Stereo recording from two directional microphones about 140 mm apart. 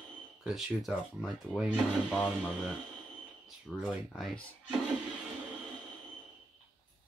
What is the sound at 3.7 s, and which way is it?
Speech, 5° left (ahead or behind).